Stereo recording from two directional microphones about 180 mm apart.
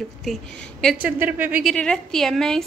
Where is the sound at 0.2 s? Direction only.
5° left (ahead or behind).